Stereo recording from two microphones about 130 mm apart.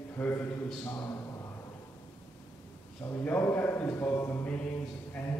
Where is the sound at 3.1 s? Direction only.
15° left (ahead or behind).